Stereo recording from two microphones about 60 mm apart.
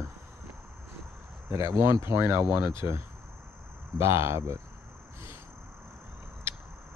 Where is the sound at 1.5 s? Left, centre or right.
Right.